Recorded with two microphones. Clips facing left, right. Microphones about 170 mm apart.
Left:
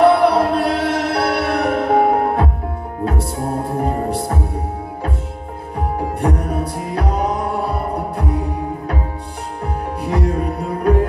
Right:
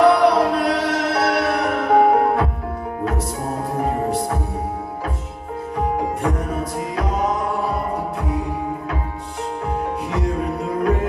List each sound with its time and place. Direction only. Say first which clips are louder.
0.0 s music: left 2 dB; 30° left (ahead or behind)
6.2 s music: left 3 dB; 35° left (ahead or behind)
10.2 s music: left 2 dB; 35° left (ahead or behind)